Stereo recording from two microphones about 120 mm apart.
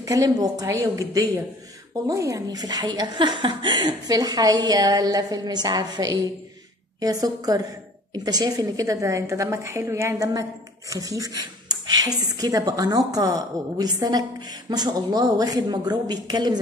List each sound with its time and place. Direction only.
0.0 s a woman's voice: 30° right (ahead or behind)